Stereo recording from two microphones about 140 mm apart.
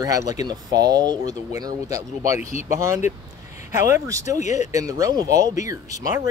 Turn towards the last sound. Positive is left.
turn(degrees=-25)  # may be behind; listen again after turning